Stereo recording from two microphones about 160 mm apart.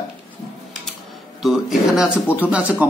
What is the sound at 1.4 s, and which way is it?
Speech, 5° right (ahead or behind).